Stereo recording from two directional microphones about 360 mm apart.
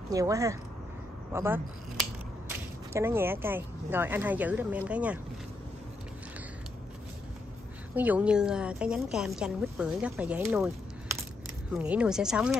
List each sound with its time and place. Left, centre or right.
0.1 s speech: centre
2.9 s speech: centre
7.9 s speech: centre